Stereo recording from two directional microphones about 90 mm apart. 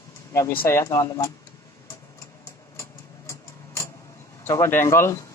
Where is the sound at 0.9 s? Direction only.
40° left (ahead or behind).